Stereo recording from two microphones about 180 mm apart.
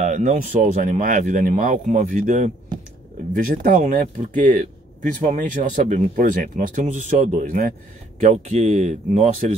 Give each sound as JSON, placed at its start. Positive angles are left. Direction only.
{"t": 0.0, "sound": "speech", "side_deg": -45}